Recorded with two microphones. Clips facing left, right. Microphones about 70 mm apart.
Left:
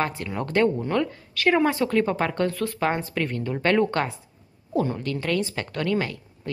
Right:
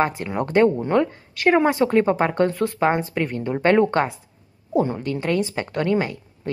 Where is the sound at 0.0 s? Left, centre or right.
Right.